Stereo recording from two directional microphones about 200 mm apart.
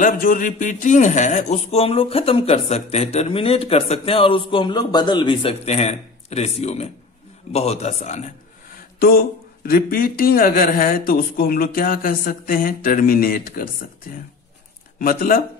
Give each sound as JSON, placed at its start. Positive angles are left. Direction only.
{"t": 0.0, "sound": "a man's voice", "side_deg": 45}
{"t": 8.7, "sound": "speech", "side_deg": 50}
{"t": 15.0, "sound": "speech", "side_deg": 45}